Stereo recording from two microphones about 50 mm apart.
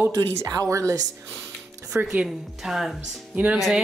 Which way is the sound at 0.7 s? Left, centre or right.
Right.